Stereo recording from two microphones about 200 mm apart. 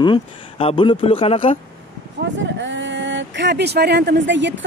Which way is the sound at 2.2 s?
65° right (ahead or behind).